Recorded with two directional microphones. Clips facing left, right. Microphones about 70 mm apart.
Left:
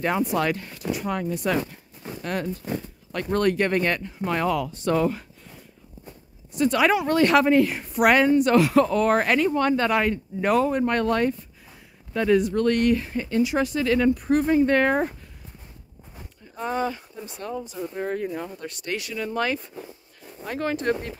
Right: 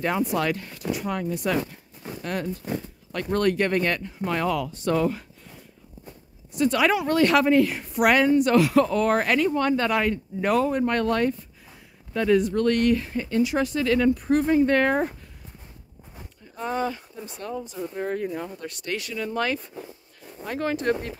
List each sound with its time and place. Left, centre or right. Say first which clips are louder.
0.0 s a woman's voice: left 1 dB; left
1.6 s walk: even; centre
2.7 s speech: even; centre
3.1 s a woman's voice: left 1 dB; left
6.5 s a woman's voice: left 1 dB; left
16.5 s speech: left 1 dB; centre
18.9 s speech: even; centre
20.4 s speech: even; centre